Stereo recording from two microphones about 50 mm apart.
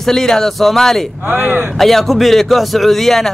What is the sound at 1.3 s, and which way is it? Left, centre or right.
Speech, right.